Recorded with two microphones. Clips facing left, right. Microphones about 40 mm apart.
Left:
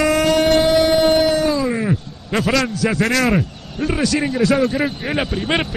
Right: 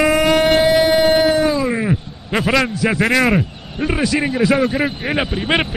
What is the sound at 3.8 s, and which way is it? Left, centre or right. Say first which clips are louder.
A man's voice: right 1 dB; centre.